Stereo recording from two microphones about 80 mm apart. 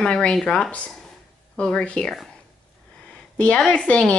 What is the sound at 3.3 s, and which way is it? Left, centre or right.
Speech, centre.